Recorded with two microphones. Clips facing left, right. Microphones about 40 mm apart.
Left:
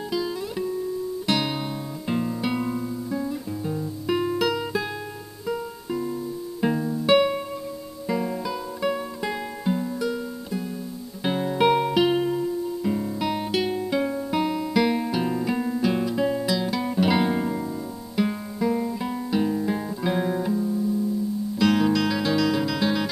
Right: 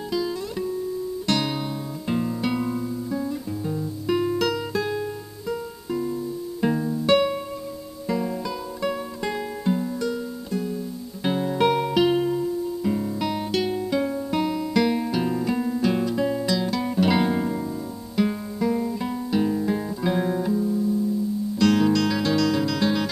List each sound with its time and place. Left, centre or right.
0.1 s music: centre
2.0 s guitar: centre
6.6 s music: centre
18.1 s guitar: centre